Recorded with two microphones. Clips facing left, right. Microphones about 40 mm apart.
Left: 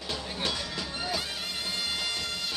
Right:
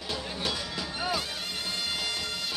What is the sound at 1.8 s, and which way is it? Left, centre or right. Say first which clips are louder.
Music: even; centre.